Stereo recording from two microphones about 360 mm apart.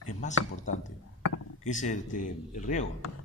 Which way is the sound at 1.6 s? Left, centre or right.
Centre.